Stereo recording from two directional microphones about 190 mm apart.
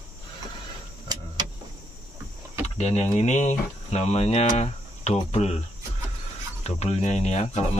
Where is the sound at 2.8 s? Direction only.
35° left (ahead or behind).